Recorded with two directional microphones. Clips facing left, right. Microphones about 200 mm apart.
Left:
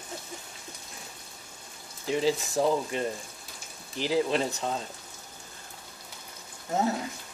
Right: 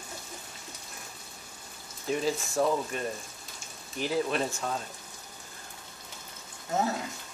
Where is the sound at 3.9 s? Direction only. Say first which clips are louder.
Left 3 dB; 90° left.